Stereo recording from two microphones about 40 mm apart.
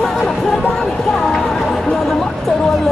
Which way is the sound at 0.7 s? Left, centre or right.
Centre.